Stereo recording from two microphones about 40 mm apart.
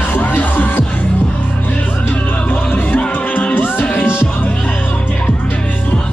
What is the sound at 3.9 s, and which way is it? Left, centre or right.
Music, left.